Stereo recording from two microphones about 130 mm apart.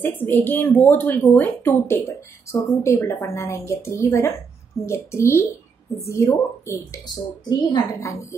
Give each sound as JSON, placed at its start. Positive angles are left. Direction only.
{"t": 0.0, "sound": "a woman's voice", "side_deg": 15}